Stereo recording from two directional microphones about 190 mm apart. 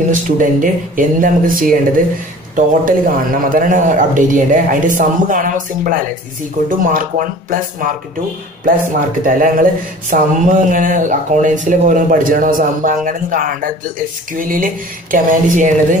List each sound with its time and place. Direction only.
0.1 s a man's voice: 45° right (ahead or behind)
9.2 s a man's voice: 45° right (ahead or behind)